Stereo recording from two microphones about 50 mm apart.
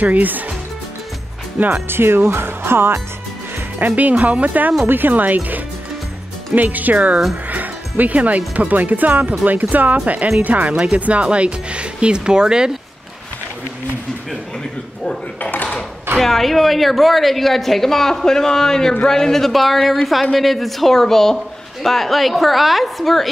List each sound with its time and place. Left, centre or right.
0.0 s speech: right
1.6 s speech: right
2.0 s speech: right
3.8 s speech: right
4.8 s speech: right; by 12.7 s centre
15.5 s a sound: left
16.2 s a woman's voice: centre